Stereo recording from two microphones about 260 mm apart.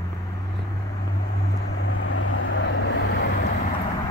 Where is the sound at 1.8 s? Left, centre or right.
Left.